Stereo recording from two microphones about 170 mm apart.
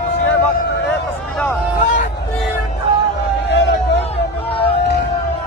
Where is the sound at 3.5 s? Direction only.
90° left.